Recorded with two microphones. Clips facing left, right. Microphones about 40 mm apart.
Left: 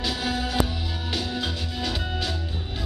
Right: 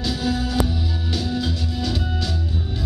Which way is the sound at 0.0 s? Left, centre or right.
Centre.